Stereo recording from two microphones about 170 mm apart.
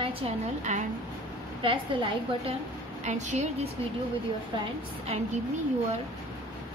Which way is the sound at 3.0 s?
45° right (ahead or behind).